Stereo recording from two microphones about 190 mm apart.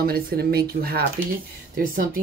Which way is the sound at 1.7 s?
50° right (ahead or behind).